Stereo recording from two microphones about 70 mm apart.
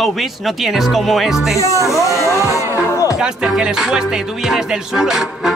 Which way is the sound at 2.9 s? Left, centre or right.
Left.